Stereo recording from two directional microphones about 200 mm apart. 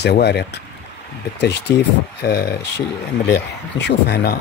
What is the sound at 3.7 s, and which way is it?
Speech, 55° left (ahead or behind).